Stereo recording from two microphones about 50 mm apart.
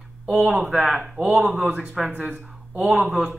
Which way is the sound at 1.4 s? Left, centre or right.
Right.